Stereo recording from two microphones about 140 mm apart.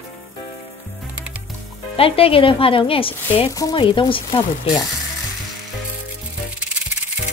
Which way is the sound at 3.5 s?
25° left (ahead or behind).